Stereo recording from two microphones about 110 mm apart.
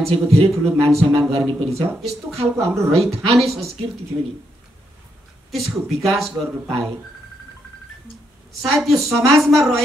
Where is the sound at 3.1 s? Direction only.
65° right (ahead or behind).